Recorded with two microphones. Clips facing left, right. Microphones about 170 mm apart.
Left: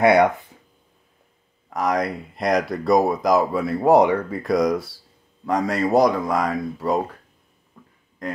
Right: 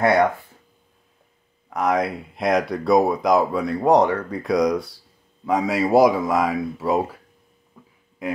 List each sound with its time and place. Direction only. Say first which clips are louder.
0.0 s speech: left 2 dB; 15° left (ahead or behind)
1.7 s speech: right 1 dB; centre (ahead or behind)
7.8 s a sound: even; 10° right (ahead or behind)
8.2 s a man's voice: right 3 dB; 5° right (ahead or behind)